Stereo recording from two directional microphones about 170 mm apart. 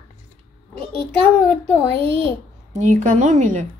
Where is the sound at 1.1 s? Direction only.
10° left (ahead or behind).